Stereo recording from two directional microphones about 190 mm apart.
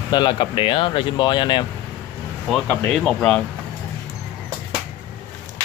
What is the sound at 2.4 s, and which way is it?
Speech, centre (ahead or behind).